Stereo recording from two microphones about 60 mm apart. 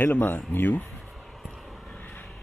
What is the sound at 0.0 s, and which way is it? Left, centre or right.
Speech, left.